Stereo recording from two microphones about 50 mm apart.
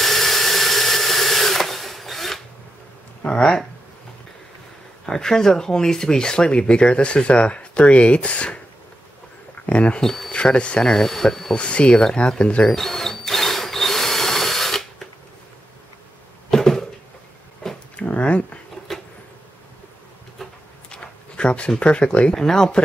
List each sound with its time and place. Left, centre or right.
0.0 s drill: centre
3.3 s speech: centre
5.0 s speech: centre
9.7 s speech: left
9.9 s speech: centre
10.3 s speech: left
11.0 s speech: centre
11.5 s speech: left
12.6 s drill: centre
16.4 s a sound: centre
17.9 s a sound: left
20.9 s speech: centre
22.3 s speech: centre